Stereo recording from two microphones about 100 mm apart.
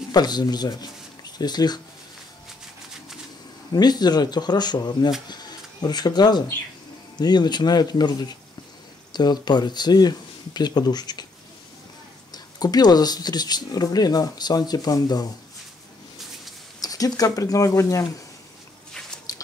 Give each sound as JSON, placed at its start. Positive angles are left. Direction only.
{"t": 0.1, "sound": "speech", "side_deg": 45}
{"t": 3.7, "sound": "speech", "side_deg": 45}
{"t": 12.3, "sound": "speech", "side_deg": 40}
{"t": 16.8, "sound": "speech", "side_deg": 40}
{"t": 19.3, "sound": "a sound", "side_deg": 35}